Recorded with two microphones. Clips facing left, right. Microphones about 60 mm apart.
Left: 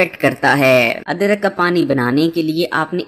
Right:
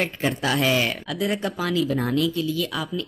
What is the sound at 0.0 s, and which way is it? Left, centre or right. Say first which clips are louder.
Speech: left 10 dB; left.